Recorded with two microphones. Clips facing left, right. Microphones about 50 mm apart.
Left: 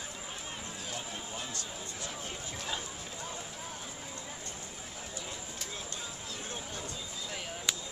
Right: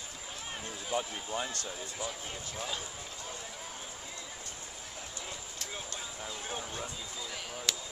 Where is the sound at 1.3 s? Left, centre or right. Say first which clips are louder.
Right 5 dB; right.